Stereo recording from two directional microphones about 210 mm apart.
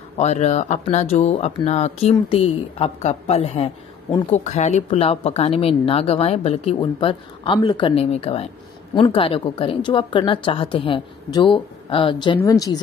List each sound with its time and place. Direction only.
0.2 s a woman's voice: 30° left (ahead or behind); by 12.8 s 15° left (ahead or behind)